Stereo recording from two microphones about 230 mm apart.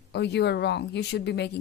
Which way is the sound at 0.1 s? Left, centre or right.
Left.